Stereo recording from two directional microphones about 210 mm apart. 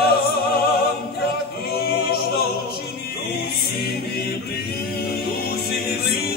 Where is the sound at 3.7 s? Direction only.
50° left (ahead or behind).